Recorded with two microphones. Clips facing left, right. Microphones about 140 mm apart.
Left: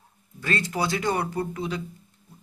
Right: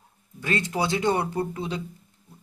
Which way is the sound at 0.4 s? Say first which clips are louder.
Right 1 dB; 20° right (ahead or behind).